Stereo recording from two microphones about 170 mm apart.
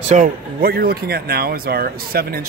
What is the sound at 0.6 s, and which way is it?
Speech, 60° right (ahead or behind).